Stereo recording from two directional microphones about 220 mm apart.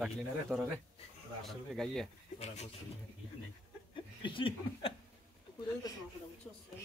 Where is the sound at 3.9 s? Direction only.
20° left (ahead or behind).